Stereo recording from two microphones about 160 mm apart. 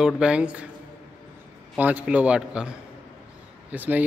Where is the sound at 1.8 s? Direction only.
10° right (ahead or behind).